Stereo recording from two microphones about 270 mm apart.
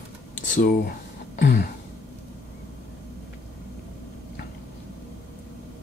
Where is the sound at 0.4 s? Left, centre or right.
Left.